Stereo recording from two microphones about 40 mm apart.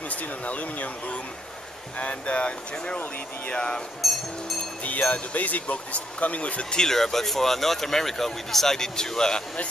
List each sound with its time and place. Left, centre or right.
0.1 s speech: left
4.0 s speech: centre
4.8 s speech: left
6.7 s speech: centre